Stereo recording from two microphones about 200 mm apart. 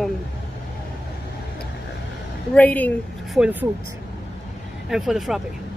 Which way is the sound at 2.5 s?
10° left (ahead or behind).